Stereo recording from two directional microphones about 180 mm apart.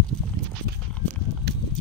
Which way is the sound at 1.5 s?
70° right (ahead or behind).